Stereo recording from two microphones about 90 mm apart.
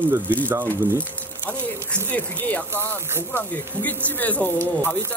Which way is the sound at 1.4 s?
15° left (ahead or behind).